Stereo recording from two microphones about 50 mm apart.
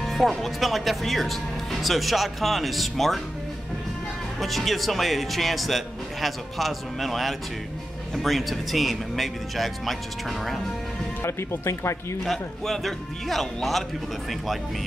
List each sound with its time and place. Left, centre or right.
0.0 s speech: centre
4.4 s speech: centre
11.2 s speech: left
12.3 s speech: centre